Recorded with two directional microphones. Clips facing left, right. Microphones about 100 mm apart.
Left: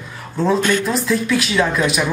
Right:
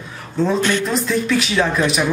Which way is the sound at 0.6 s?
45° left (ahead or behind).